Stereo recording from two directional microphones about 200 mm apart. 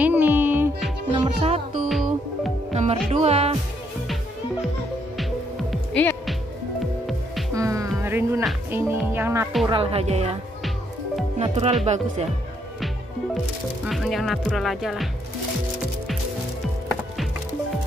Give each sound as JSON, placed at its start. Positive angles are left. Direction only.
{"t": 0.0, "sound": "music", "side_deg": -10}
{"t": 1.1, "sound": "music", "side_deg": -30}
{"t": 1.9, "sound": "music", "side_deg": 0}
{"t": 2.7, "sound": "music", "side_deg": -35}
{"t": 3.1, "sound": "speech", "side_deg": -30}
{"t": 5.1, "sound": "music", "side_deg": 0}
{"t": 7.5, "sound": "music", "side_deg": -15}
{"t": 8.0, "sound": "speech", "side_deg": -10}
{"t": 9.7, "sound": "speech", "side_deg": -30}
{"t": 11.3, "sound": "speech", "side_deg": -30}
{"t": 13.8, "sound": "speech", "side_deg": 0}